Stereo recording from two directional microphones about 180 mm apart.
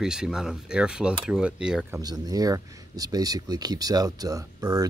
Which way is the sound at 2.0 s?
20° right (ahead or behind).